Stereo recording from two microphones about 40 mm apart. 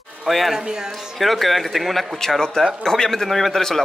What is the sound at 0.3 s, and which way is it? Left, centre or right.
Speech, centre.